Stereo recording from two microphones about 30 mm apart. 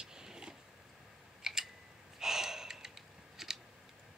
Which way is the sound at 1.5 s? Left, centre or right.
Right.